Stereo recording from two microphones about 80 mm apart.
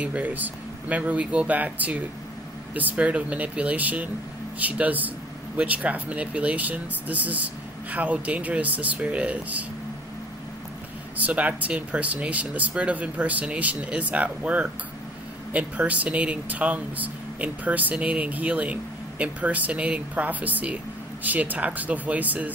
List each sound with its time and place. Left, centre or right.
0.0 s speech: centre
11.2 s speech: centre